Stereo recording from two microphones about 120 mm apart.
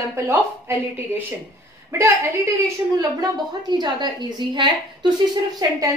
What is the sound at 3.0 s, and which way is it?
A woman's voice, 35° right (ahead or behind).